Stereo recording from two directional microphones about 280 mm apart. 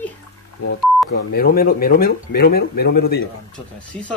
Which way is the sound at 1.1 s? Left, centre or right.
Left.